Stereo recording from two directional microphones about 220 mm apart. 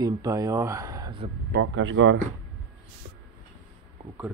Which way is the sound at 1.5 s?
55° right (ahead or behind).